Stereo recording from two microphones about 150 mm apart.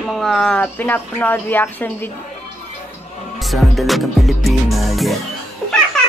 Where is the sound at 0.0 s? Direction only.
Centre (ahead or behind).